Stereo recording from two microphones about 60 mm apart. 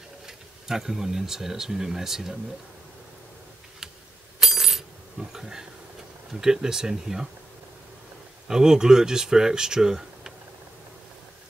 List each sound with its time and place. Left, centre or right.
0.3 s speech: centre
4.4 s coin: centre
5.3 s speech: centre
8.5 s speech: centre